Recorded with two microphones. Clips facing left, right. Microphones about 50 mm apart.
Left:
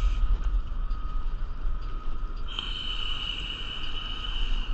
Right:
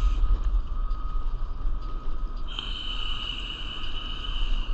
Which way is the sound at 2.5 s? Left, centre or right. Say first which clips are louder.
Left 1 dB; centre.